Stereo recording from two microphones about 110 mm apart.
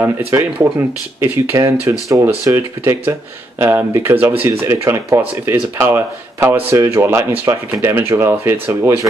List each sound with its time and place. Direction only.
0.3 s speech: 20° right (ahead or behind)